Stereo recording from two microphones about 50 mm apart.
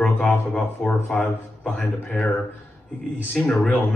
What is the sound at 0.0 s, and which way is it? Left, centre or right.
A man's voice, left.